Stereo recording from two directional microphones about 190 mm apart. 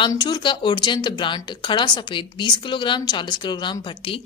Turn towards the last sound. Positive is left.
turn(degrees=25)  # may be behind; listen again after turning